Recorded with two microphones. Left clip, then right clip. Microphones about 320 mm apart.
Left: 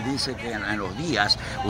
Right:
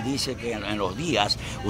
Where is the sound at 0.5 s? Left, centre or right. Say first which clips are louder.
Even; centre.